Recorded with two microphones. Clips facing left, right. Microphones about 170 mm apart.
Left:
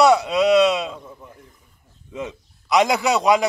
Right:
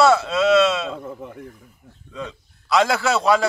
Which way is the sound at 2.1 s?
20° left (ahead or behind).